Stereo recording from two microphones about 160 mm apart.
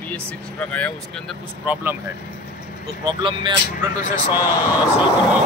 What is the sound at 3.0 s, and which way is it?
Speech, 30° right (ahead or behind).